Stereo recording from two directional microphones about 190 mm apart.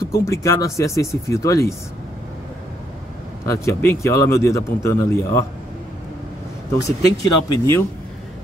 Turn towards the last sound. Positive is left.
turn(degrees=15)  # may be behind; listen again after turning